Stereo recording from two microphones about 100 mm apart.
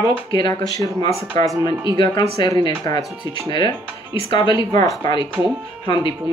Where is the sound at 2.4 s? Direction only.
50° left (ahead or behind).